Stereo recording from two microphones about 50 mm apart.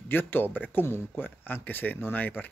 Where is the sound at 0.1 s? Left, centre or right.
Left.